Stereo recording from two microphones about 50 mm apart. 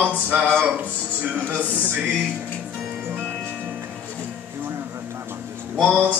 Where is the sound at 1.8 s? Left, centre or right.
Right.